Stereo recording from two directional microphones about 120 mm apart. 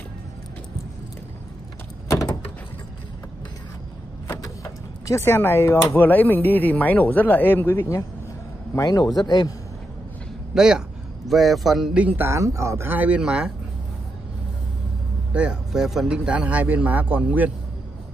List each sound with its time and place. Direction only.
2.0 s door: 25° left (ahead or behind)
5.0 s a man's voice: 25° left (ahead or behind)
8.7 s a man's voice: 30° left (ahead or behind)
10.5 s speech: 5° right (ahead or behind)
12.3 s speech: 25° right (ahead or behind); by 13.5 s 10° right (ahead or behind)
15.3 s speech: 10° right (ahead or behind)